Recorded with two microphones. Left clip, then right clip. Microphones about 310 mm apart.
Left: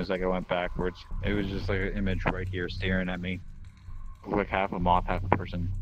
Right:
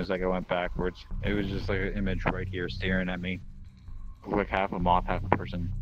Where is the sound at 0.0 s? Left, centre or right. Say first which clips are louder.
Even; centre.